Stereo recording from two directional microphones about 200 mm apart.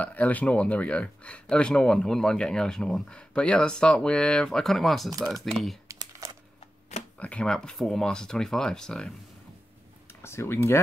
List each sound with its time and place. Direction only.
0.0 s speech: 10° left (ahead or behind)
5.9 s crumpling: 15° right (ahead or behind)
7.2 s speech: 5° left (ahead or behind)